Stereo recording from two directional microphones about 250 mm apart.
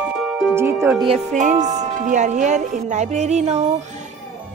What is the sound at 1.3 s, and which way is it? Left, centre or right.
Speech, right.